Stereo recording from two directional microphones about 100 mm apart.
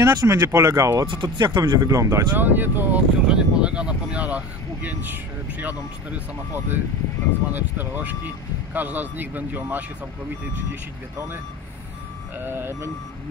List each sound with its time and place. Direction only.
0.0 s speech: 40° right (ahead or behind)
1.0 s speech: 50° right (ahead or behind); by 3.0 s 20° right (ahead or behind)
3.3 s speech: 10° right (ahead or behind)
12.4 s speech: 20° right (ahead or behind)